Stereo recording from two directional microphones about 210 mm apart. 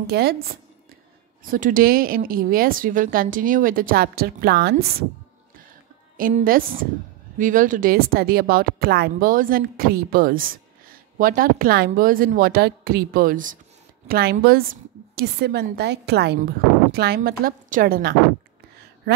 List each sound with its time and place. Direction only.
0.0 s speech: 50° right (ahead or behind)
6.1 s speech: 40° right (ahead or behind)